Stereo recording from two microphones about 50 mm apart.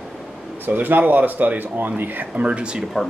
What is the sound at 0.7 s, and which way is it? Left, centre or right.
Speech, right.